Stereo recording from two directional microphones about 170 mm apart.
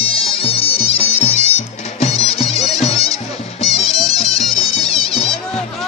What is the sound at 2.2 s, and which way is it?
Music, 35° left (ahead or behind).